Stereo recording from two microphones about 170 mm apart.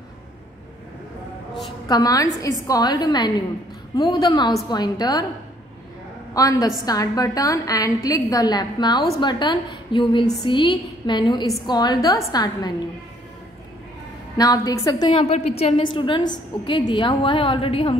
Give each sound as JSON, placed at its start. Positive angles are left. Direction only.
{"t": 1.9, "sound": "a woman's voice", "side_deg": 20}
{"t": 6.3, "sound": "a woman's voice", "side_deg": 20}
{"t": 14.3, "sound": "a woman's voice", "side_deg": 20}